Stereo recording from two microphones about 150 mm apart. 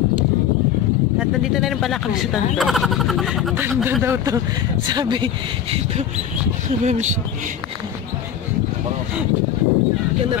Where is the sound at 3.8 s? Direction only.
15° right (ahead or behind).